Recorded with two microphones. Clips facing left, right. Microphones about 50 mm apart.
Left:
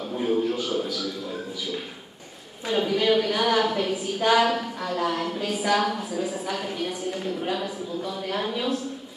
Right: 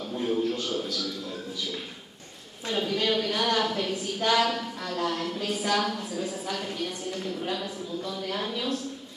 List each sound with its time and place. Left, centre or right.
0.1 s a woman's voice: centre
2.7 s a woman's voice: centre